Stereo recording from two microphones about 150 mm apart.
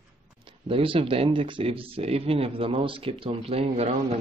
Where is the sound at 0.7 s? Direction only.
35° right (ahead or behind).